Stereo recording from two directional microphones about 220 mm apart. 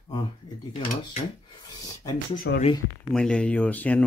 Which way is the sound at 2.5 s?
55° left (ahead or behind).